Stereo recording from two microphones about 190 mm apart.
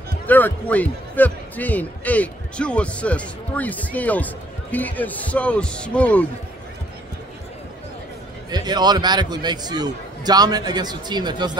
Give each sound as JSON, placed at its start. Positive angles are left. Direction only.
{"t": 0.3, "sound": "speech", "side_deg": 10}
{"t": 8.5, "sound": "a man's voice", "side_deg": -20}